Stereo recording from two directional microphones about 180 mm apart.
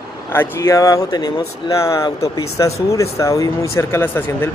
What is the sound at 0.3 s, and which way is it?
Speech, 15° left (ahead or behind).